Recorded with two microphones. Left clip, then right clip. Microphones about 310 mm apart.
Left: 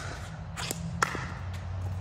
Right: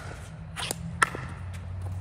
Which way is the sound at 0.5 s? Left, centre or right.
Right.